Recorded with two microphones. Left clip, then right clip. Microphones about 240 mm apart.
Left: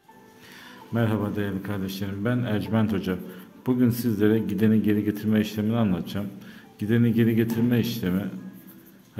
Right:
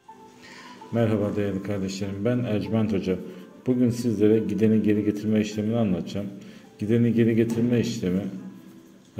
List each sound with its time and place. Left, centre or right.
0.9 s speech: centre